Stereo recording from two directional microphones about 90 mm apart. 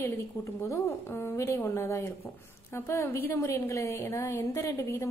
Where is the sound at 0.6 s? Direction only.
30° left (ahead or behind).